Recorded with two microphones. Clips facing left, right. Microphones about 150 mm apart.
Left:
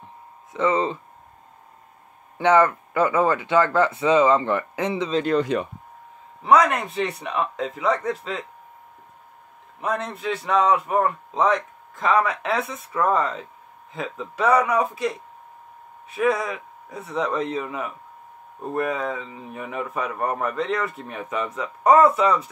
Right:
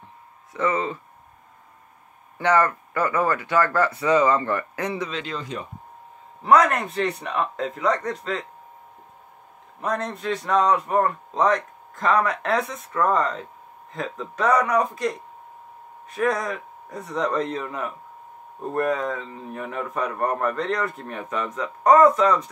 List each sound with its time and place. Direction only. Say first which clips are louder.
0.5 s speech: left 3 dB; 25° left (ahead or behind)
2.3 s speech: left 3 dB; 20° left (ahead or behind)
5.1 s speech: left 10 dB; 55° left (ahead or behind)
6.4 s speech: even; centre (ahead or behind)
9.8 s speech: even; 5° left (ahead or behind)